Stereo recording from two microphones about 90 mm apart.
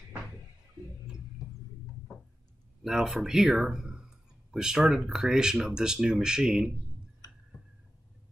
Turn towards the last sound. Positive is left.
turn(degrees=-10)  # may be behind; listen again after turning